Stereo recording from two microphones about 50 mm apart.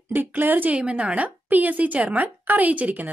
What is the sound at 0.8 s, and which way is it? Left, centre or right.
A woman's voice, right.